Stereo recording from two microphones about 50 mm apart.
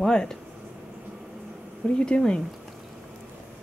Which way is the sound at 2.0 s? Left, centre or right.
Centre.